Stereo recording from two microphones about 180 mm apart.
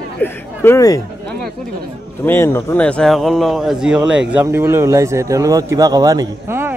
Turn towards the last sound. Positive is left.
turn(degrees=-15)  # may be behind; listen again after turning